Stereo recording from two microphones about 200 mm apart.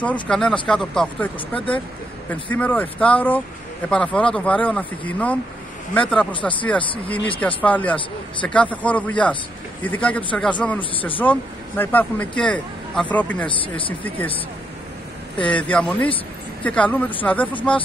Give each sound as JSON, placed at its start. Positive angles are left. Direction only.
{"t": 0.0, "sound": "speech", "side_deg": 5}
{"t": 13.5, "sound": "speech", "side_deg": 25}
{"t": 15.5, "sound": "speech", "side_deg": 5}